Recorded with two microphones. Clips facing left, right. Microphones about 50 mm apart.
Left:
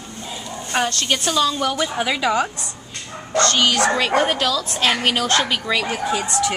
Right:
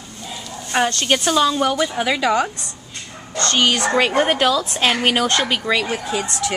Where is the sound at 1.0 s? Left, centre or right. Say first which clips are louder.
Right 3 dB; right.